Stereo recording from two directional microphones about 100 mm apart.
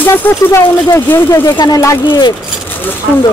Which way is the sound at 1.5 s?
45° left (ahead or behind).